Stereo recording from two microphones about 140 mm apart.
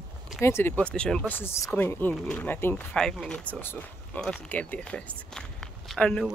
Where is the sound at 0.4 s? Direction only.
20° left (ahead or behind).